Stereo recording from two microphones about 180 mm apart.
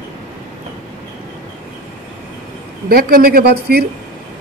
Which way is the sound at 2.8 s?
55° right (ahead or behind).